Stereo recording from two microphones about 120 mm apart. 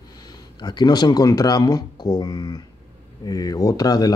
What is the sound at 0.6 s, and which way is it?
Speech, 35° left (ahead or behind).